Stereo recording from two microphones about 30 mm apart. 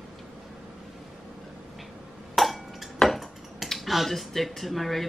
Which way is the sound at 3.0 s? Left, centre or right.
Centre.